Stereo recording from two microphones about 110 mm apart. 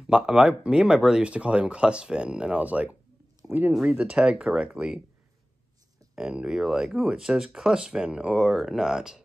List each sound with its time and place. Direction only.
0.0 s speech: 5° right (ahead or behind)
6.1 s speech: 10° right (ahead or behind)